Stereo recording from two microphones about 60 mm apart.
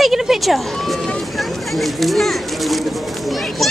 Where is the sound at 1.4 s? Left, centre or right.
Centre.